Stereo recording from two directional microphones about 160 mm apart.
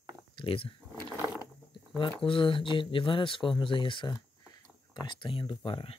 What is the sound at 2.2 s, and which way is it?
Speech, 35° left (ahead or behind).